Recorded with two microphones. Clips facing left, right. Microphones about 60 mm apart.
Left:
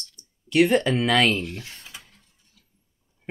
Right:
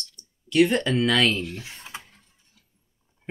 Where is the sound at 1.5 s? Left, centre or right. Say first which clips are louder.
Even; centre.